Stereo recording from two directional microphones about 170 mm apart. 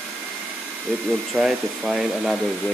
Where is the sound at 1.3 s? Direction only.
Centre (ahead or behind).